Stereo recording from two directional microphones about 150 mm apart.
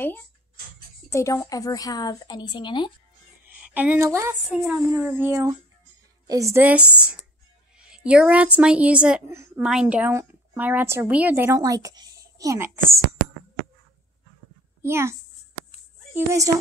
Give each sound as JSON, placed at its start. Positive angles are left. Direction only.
{"t": 1.1, "sound": "a woman's voice", "side_deg": 20}
{"t": 3.4, "sound": "speech", "side_deg": -10}
{"t": 4.5, "sound": "a woman's voice", "side_deg": -5}
{"t": 14.9, "sound": "a woman's voice", "side_deg": -15}
{"t": 16.2, "sound": "a woman's voice", "side_deg": -20}